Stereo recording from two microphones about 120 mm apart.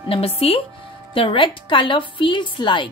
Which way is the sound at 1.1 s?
45° left (ahead or behind).